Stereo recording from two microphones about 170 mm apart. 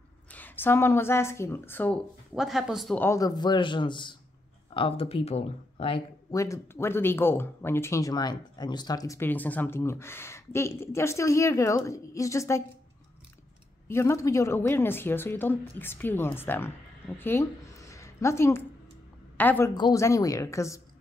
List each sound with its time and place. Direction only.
0.3 s speech: 10° left (ahead or behind)
2.3 s speech: centre (ahead or behind)
3.0 s a man's voice: 20° left (ahead or behind)
6.3 s speech: 20° left (ahead or behind)
13.8 s a woman's voice: 15° left (ahead or behind)
19.7 s a man's voice: 20° left (ahead or behind)